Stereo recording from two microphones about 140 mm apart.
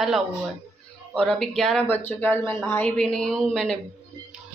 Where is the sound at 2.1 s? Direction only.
15° left (ahead or behind).